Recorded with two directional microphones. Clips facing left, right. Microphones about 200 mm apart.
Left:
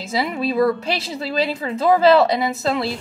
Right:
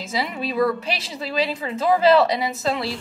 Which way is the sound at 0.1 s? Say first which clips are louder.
Left 5 dB; 35° left (ahead or behind).